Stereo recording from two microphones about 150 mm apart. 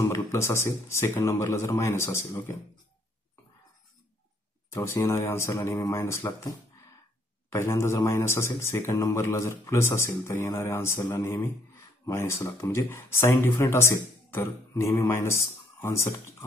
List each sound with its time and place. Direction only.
0.0 s a man's voice: 20° left (ahead or behind)
4.7 s a man's voice: 15° left (ahead or behind)